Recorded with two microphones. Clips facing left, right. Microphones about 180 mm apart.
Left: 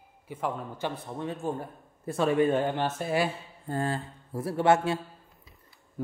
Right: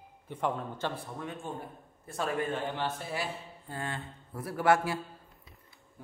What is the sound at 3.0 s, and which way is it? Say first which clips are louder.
Speech: left 8 dB; 55° left (ahead or behind).